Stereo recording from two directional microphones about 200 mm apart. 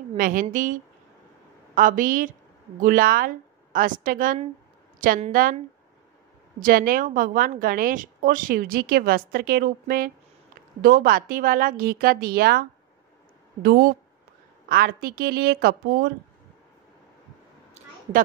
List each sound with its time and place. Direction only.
0.2 s a woman's voice: 45° right (ahead or behind)
1.8 s a woman's voice: 40° right (ahead or behind)
6.6 s a woman's voice: 45° right (ahead or behind)